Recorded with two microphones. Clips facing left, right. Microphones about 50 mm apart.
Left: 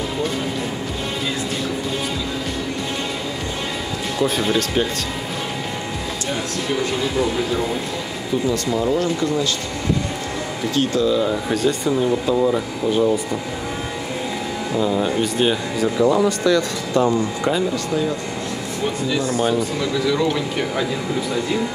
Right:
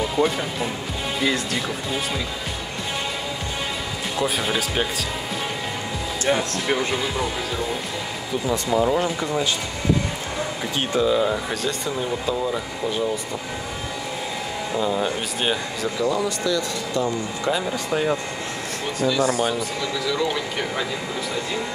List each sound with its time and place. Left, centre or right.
4.2 s speech: centre
6.9 s speech: centre
8.5 s speech: centre
10.7 s speech: centre
11.2 s speech: centre
14.8 s speech: centre